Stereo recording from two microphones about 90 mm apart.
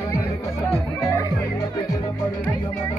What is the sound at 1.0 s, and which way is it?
Music, 35° left (ahead or behind).